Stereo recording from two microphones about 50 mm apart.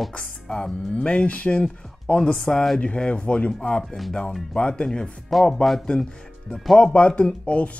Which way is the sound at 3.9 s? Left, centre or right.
Centre.